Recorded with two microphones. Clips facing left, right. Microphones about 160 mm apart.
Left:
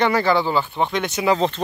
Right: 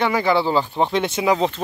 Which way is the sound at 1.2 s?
10° right (ahead or behind).